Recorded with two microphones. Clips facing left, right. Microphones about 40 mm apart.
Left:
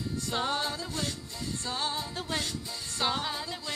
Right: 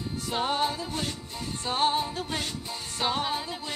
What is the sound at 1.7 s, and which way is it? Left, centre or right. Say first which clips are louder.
Music: right 9 dB; right.